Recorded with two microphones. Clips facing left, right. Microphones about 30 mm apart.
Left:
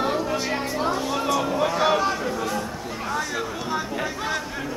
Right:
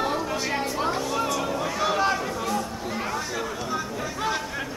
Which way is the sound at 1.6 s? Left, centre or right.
Centre.